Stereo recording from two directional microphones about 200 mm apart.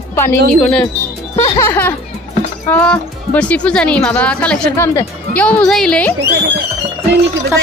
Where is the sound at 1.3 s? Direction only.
15° left (ahead or behind).